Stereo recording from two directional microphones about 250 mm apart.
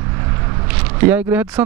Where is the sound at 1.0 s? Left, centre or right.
Centre.